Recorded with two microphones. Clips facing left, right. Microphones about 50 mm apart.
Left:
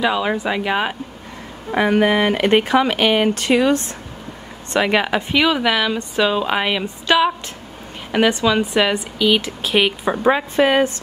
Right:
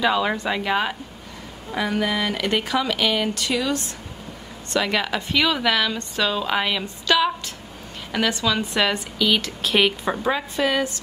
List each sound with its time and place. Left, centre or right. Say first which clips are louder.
0.0 s a woman's voice: left 2 dB; centre
1.7 s a woman's voice: left 8 dB; left; by 10.1 s centre
10.1 s speech: left 7 dB; left